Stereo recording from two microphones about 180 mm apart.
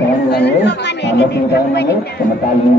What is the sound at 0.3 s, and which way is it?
A woman's voice, 70° left (ahead or behind).